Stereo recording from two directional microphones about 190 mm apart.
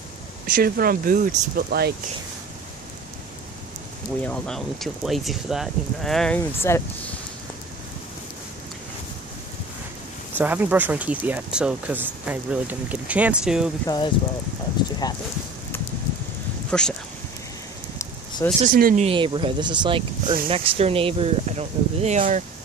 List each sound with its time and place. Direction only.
0.5 s speech: 50° right (ahead or behind)
4.2 s speech: 5° left (ahead or behind)
10.3 s speech: 10° right (ahead or behind)
13.8 s speech: 25° left (ahead or behind)
16.7 s speech: 5° left (ahead or behind)
18.7 s speech: 45° right (ahead or behind)
19.0 s speech: 25° right (ahead or behind)